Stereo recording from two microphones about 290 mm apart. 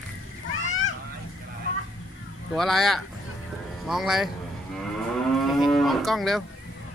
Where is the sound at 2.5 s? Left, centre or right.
Centre.